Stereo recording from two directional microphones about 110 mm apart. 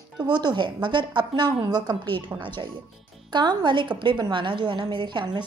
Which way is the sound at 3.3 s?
40° right (ahead or behind).